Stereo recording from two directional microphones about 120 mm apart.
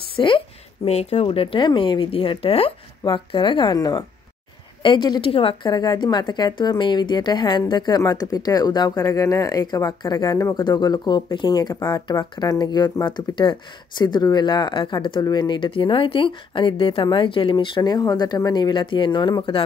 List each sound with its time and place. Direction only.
0.1 s a woman's voice: 45° left (ahead or behind)
0.8 s speech: 60° left (ahead or behind)
3.0 s speech: 40° left (ahead or behind)
3.7 s speech: 30° left (ahead or behind); by 5.7 s 50° left (ahead or behind)
5.7 s speech: 35° left (ahead or behind)